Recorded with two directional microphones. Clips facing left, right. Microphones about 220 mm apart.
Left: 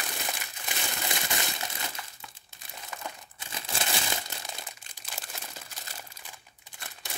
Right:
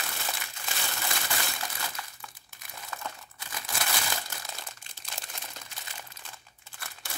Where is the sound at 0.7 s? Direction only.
20° left (ahead or behind).